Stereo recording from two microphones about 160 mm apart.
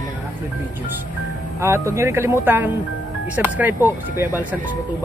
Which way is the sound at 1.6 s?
15° right (ahead or behind).